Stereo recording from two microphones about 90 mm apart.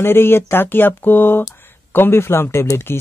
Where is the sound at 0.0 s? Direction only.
25° left (ahead or behind).